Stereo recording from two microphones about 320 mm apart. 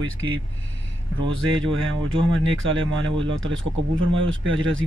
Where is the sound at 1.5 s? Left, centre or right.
Right.